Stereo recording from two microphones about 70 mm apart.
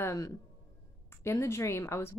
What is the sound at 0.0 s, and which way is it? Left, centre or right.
Speech, left.